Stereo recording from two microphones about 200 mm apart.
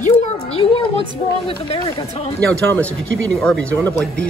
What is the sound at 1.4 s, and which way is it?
Speech, 30° left (ahead or behind).